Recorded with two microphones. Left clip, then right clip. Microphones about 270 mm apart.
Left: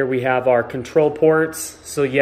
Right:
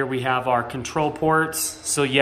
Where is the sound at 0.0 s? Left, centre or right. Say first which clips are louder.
Left 5 dB; centre.